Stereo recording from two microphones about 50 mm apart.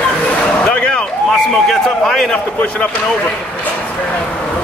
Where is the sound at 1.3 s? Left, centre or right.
Centre.